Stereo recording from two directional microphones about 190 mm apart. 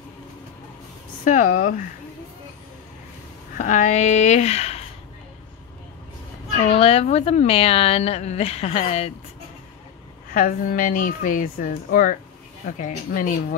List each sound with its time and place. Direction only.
1.2 s speech: 45° left (ahead or behind)
3.5 s speech: 40° left (ahead or behind)
6.6 s speech: 30° left (ahead or behind)
10.3 s speech: 45° left (ahead or behind)